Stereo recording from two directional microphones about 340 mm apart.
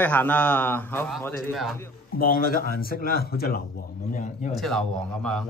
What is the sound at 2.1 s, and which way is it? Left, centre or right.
Speech, left.